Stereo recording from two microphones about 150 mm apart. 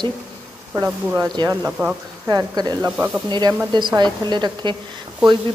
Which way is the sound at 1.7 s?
10° right (ahead or behind).